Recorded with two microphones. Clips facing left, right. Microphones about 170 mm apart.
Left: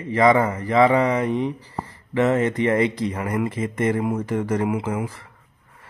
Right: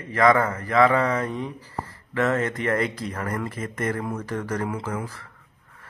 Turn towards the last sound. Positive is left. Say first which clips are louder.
# left 5 dB
turn(degrees=20)  # may be behind; listen again after turning